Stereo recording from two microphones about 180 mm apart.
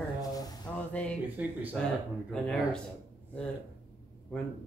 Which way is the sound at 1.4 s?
10° right (ahead or behind).